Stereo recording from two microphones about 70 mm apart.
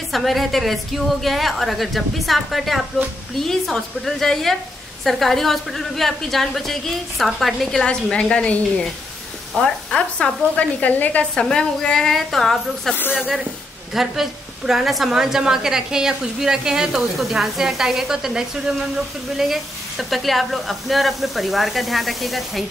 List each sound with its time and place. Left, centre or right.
0.1 s speech: centre
7.8 s speech: centre
11.4 s speech: centre
13.9 s a woman's voice: centre